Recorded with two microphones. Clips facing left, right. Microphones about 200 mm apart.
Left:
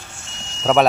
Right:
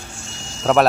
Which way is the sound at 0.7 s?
Centre (ahead or behind).